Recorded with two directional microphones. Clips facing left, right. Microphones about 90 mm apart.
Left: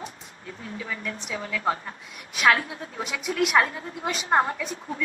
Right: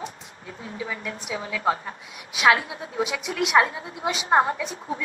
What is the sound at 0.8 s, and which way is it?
A woman's voice, 10° right (ahead or behind).